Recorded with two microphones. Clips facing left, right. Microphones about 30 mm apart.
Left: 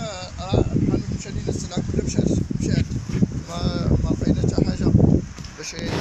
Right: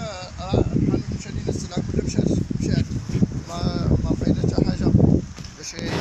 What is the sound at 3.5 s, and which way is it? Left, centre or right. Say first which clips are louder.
Speech: even; centre.